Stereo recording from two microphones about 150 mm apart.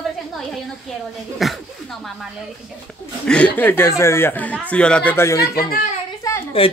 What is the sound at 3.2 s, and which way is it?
Speech, 10° left (ahead or behind).